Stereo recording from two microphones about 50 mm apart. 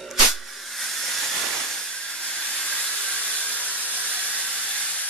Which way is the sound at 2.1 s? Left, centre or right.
Left.